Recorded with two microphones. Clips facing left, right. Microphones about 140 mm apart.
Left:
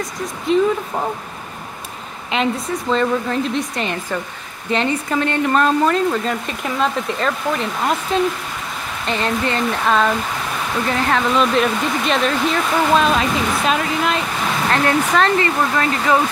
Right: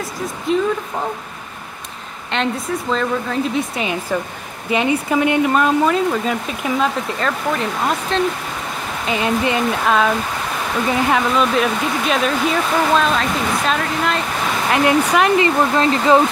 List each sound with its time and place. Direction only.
0.5 s speech: centre (ahead or behind)
2.3 s speech: centre (ahead or behind)
9.0 s speech: 10° right (ahead or behind)
14.7 s speech: 15° right (ahead or behind)